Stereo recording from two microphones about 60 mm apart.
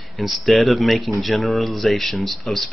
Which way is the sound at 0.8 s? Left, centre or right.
Centre.